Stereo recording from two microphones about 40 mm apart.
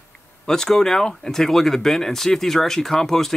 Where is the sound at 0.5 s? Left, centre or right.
Centre.